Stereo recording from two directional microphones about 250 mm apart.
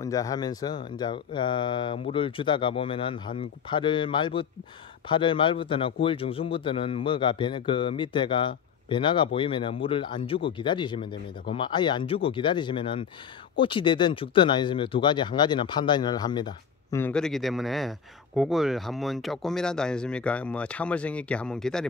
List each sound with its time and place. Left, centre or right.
0.0 s a man's voice: centre